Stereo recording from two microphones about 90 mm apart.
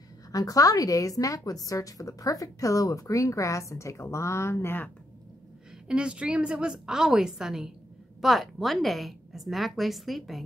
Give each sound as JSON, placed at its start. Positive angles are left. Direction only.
{"t": 0.3, "sound": "a woman's voice", "side_deg": 40}
{"t": 5.9, "sound": "a woman's voice", "side_deg": -10}